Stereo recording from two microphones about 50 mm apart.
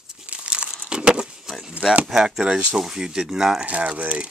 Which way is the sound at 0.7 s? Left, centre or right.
Centre.